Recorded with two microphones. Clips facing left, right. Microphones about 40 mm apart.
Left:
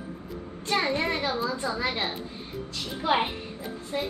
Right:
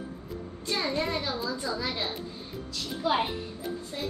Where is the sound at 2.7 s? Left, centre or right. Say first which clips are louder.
Left 2 dB; left.